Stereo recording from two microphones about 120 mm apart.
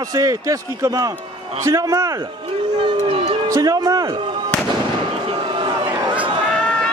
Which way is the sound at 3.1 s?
50° right (ahead or behind).